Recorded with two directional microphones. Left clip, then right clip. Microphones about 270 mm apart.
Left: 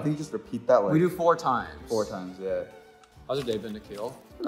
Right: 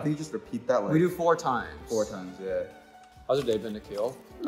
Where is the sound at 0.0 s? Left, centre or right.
Centre.